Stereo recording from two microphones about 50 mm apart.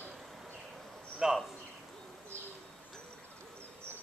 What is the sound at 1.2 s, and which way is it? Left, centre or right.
Speech, centre.